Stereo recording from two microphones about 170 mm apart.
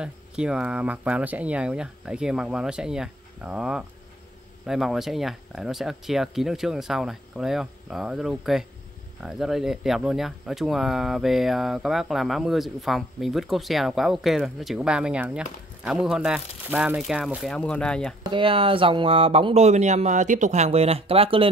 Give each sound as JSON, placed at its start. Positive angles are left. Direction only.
{"t": 0.0, "sound": "speech", "side_deg": -5}
{"t": 18.2, "sound": "speech", "side_deg": -30}